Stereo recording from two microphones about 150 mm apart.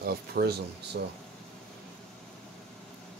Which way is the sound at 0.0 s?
90° right.